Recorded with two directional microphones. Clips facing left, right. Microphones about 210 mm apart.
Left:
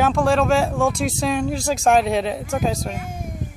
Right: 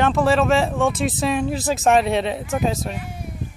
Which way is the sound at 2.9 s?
45° left (ahead or behind).